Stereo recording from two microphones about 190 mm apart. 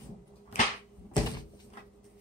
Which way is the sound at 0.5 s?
30° left (ahead or behind).